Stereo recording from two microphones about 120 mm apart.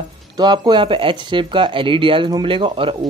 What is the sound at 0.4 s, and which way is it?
Speech, 40° right (ahead or behind).